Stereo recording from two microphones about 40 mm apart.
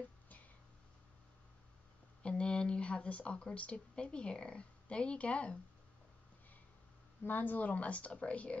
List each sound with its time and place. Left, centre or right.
2.2 s a sound: left
2.8 s speech: left
7.2 s speech: left